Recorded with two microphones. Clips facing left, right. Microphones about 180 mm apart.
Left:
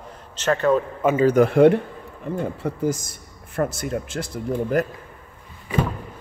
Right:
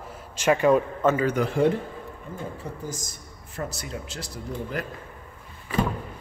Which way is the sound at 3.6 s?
55° left (ahead or behind).